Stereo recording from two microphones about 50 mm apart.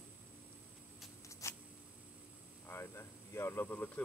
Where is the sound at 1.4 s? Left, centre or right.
Left.